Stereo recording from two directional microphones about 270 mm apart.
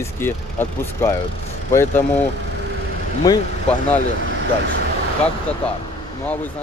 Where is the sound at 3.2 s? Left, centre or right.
Centre.